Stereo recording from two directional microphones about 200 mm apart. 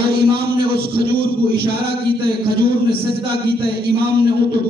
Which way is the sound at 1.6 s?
55° right (ahead or behind).